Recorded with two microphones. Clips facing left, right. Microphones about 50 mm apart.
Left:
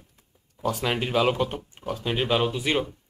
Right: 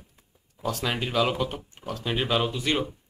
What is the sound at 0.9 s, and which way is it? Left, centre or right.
Speech, centre.